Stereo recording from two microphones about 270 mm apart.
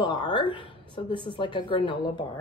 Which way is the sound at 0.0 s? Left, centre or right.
Centre.